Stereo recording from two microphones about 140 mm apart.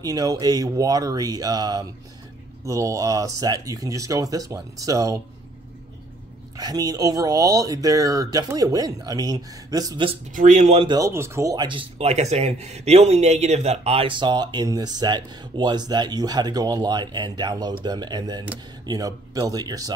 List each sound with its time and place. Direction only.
0.0 s speech: 25° right (ahead or behind)
6.5 s speech: 25° right (ahead or behind)
10.3 s speech: 65° right (ahead or behind)
11.0 s speech: 20° right (ahead or behind)
11.6 s speech: 35° right (ahead or behind)
12.1 s speech: 50° right (ahead or behind); by 19.9 s 25° right (ahead or behind)